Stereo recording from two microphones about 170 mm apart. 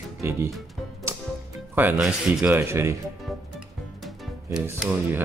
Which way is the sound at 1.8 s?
10° right (ahead or behind).